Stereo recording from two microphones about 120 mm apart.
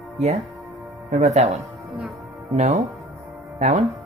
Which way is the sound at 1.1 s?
75° right (ahead or behind).